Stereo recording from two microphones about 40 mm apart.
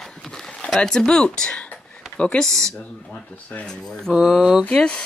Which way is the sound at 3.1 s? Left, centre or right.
Left.